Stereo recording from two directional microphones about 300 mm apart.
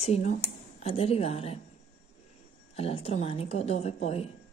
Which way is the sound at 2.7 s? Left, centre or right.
Centre.